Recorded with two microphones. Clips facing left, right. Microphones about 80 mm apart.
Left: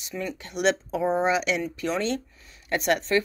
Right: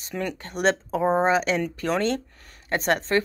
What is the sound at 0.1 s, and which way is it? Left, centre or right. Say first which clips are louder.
Speech: right 3 dB; right.